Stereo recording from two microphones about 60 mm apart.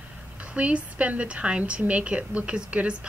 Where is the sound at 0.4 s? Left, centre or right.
Right.